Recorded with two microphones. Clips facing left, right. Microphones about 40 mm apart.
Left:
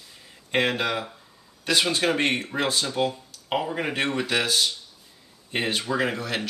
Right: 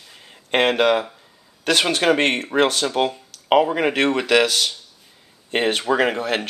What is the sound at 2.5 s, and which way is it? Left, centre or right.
Speech, right.